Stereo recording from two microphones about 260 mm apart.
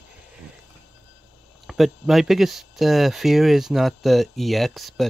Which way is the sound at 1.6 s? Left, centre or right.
Centre.